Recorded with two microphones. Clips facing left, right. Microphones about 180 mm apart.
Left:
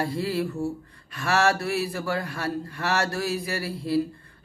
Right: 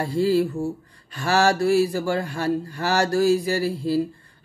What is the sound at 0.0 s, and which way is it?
Speech, 30° right (ahead or behind).